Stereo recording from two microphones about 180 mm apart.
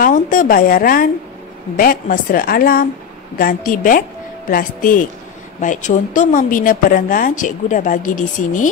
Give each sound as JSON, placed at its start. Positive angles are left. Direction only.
{"t": 0.0, "sound": "speech", "side_deg": 50}